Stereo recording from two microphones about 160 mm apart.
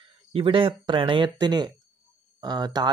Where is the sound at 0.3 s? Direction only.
35° right (ahead or behind).